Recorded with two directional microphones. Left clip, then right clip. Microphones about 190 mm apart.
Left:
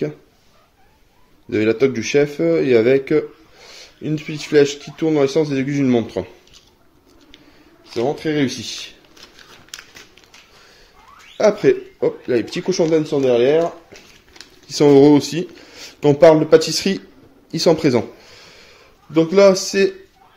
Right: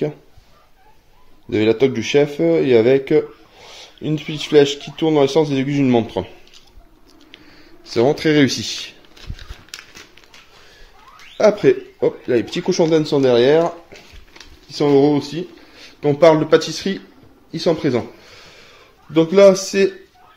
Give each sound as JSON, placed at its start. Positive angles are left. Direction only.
{"t": 1.5, "sound": "speech", "side_deg": 5}
{"t": 7.9, "sound": "speech", "side_deg": -30}
{"t": 9.7, "sound": "a sound", "side_deg": 5}
{"t": 11.3, "sound": "speech", "side_deg": 0}
{"t": 13.0, "sound": "speech", "side_deg": -15}
{"t": 14.7, "sound": "speech", "side_deg": 35}
{"t": 16.2, "sound": "speech", "side_deg": 20}
{"t": 18.3, "sound": "a sound", "side_deg": 10}